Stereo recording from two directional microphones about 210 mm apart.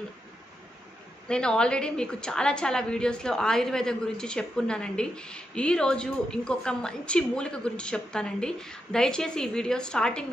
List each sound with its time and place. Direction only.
1.3 s a woman's voice: 5° left (ahead or behind)